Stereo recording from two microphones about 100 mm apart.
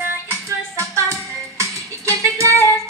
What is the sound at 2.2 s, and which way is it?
Female singing, 30° right (ahead or behind).